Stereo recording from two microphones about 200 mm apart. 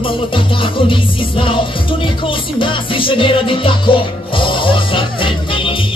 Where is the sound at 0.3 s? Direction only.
25° left (ahead or behind).